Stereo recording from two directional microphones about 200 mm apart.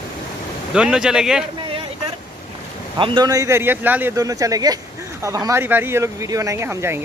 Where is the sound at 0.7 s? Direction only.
5° right (ahead or behind).